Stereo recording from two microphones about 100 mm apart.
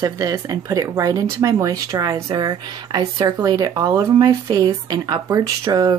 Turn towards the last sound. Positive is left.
turn(degrees=-40)  # may be behind; listen again after turning